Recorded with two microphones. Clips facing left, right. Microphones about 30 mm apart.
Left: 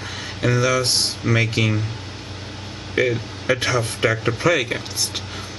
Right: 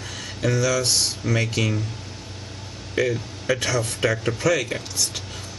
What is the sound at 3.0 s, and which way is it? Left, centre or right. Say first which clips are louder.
Speech: left 3 dB; left.